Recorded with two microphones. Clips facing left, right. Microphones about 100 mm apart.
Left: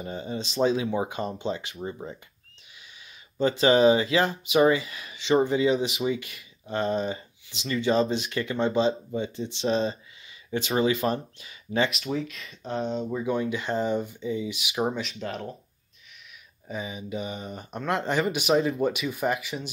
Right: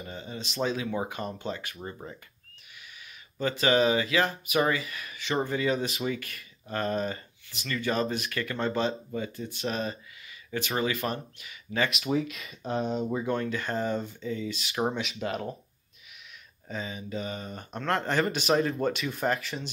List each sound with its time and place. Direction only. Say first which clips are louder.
0.0 s speech: left 6 dB; 30° left (ahead or behind)
1.8 s speech: left 5 dB; 10° left (ahead or behind)
3.3 s speech: left 4 dB; 30° left (ahead or behind)
12.1 s speech: right 2 dB; 5° right (ahead or behind)
13.2 s speech: left 2 dB; 10° left (ahead or behind)
15.2 s speech: right 3 dB; 5° right (ahead or behind)
16.6 s speech: left 2 dB; 15° left (ahead or behind)